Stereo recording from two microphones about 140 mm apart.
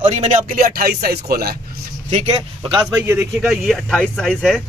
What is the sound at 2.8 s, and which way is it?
Speech, 25° right (ahead or behind).